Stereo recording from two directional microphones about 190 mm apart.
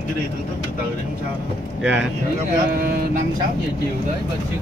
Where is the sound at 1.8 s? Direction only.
5° right (ahead or behind).